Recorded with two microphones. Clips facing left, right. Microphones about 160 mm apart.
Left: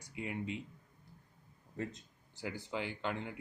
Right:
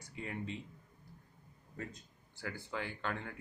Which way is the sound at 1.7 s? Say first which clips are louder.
Left 5 dB; 20° left (ahead or behind).